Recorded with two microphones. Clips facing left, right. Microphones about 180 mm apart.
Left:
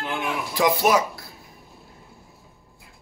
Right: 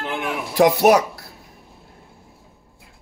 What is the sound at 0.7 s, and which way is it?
Speech, 65° right (ahead or behind).